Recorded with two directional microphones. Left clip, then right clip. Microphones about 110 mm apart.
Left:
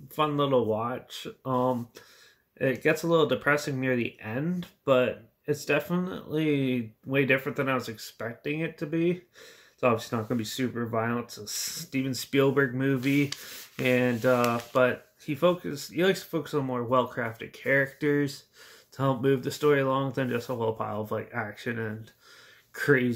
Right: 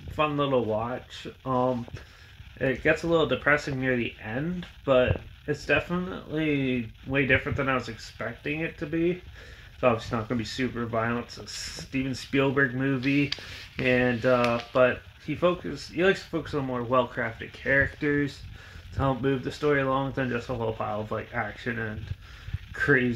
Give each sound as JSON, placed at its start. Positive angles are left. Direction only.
{"t": 0.1, "sound": "speech", "side_deg": 25}
{"t": 10.1, "sound": "speech", "side_deg": 10}
{"t": 11.4, "sound": "speech", "side_deg": 30}
{"t": 20.7, "sound": "speech", "side_deg": 15}
{"t": 22.7, "sound": "speech", "side_deg": 30}